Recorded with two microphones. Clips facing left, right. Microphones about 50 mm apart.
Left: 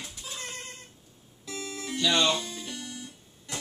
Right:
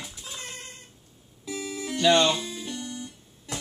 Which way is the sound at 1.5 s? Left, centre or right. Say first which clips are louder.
Right 4 dB; centre.